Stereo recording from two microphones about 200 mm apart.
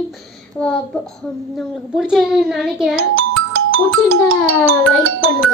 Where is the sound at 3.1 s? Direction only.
90° right.